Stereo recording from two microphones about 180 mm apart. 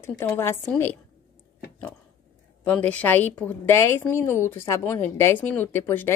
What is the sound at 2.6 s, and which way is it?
A woman's voice, 10° left (ahead or behind).